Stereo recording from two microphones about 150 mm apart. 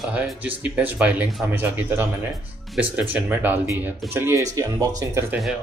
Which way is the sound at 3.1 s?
10° right (ahead or behind).